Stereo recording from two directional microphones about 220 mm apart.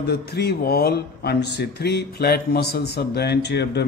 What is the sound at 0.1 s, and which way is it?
Speech, 45° left (ahead or behind).